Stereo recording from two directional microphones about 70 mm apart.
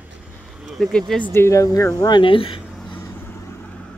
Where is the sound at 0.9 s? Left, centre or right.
Centre.